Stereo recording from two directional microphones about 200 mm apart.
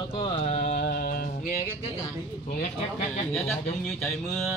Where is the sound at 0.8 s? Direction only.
50° left (ahead or behind).